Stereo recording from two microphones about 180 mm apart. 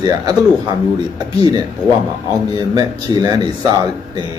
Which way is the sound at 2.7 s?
20° right (ahead or behind).